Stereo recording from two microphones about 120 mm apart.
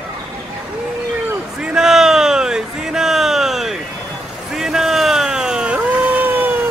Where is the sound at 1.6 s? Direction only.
5° right (ahead or behind).